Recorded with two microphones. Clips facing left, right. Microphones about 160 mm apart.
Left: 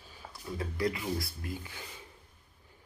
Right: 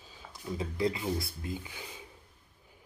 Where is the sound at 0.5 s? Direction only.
20° right (ahead or behind).